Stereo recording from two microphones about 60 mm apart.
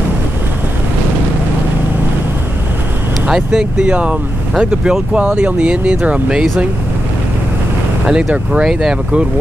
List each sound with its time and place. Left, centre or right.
3.3 s speech: centre
5.2 s speech: right
8.1 s speech: centre